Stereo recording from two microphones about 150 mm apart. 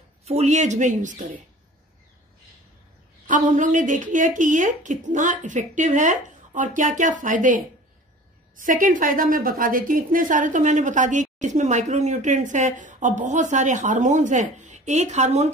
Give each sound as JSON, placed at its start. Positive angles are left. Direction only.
{"t": 0.2, "sound": "speech", "side_deg": -45}
{"t": 3.3, "sound": "speech", "side_deg": -60}